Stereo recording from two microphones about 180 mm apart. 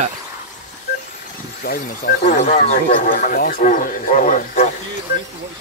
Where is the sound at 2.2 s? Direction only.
40° left (ahead or behind).